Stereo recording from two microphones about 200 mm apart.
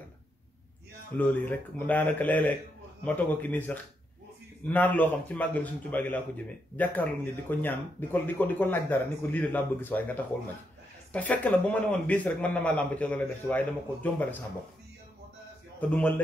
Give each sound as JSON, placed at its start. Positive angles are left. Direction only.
{"t": 1.1, "sound": "a man's voice", "side_deg": 10}
{"t": 15.8, "sound": "a man's voice", "side_deg": 5}